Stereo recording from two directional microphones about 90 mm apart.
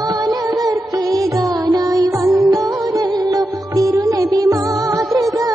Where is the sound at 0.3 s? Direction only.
45° right (ahead or behind).